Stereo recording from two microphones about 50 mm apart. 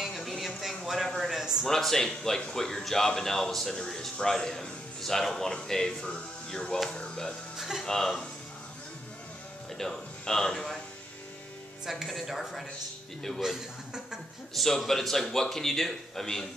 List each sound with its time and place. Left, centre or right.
0.0 s a sound: centre
1.4 s a sound: centre
1.7 s a man's voice: centre
7.5 s music: centre
7.8 s a man's voice: centre
9.8 s speech: centre
11.8 s a man's voice: centre
14.5 s speech: centre